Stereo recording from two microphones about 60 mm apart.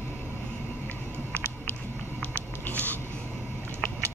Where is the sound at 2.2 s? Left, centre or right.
Left.